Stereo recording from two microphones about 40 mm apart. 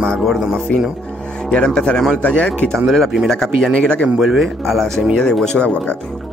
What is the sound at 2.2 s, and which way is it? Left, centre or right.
Speech, left.